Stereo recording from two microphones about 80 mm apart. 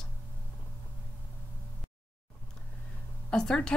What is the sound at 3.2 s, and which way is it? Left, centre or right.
Speech, centre.